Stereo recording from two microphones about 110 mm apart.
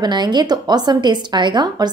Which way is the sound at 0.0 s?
40° right (ahead or behind).